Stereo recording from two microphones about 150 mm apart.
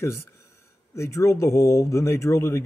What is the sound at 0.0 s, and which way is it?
Speech, 20° left (ahead or behind).